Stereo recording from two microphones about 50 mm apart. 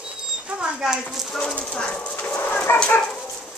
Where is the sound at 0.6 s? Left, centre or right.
Centre.